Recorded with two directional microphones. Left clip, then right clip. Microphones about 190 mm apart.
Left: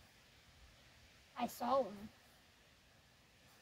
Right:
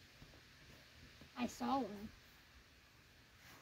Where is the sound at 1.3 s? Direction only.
50° left (ahead or behind).